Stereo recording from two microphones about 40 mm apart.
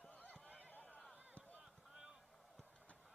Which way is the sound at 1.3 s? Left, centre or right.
Left.